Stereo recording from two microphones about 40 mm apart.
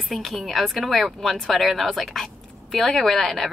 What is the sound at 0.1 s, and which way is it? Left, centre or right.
A woman's voice, centre.